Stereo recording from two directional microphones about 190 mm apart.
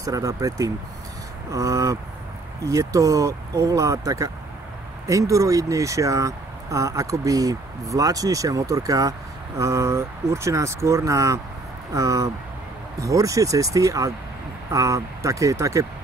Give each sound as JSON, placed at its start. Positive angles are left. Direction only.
{"t": 0.0, "sound": "speech", "side_deg": -15}